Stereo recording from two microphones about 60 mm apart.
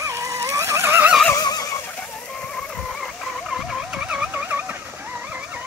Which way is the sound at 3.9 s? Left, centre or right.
Centre.